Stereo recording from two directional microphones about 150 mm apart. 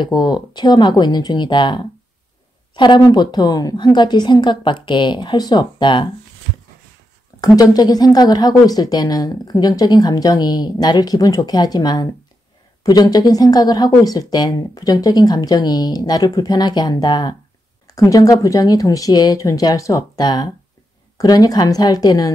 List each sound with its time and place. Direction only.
0.0 s a woman's voice: 30° left (ahead or behind)
7.3 s a woman's voice: 25° left (ahead or behind)